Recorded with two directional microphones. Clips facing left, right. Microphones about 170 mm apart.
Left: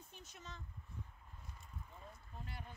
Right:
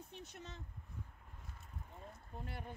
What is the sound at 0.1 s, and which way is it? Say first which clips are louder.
Speech: even; 60° right (ahead or behind).